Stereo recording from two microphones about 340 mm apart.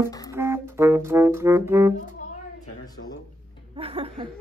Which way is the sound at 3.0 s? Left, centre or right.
Left.